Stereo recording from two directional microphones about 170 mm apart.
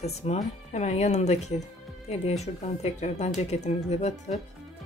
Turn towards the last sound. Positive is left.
turn(degrees=40)  # may be behind; listen again after turning